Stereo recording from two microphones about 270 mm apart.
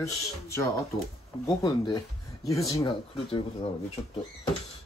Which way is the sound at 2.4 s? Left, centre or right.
Centre.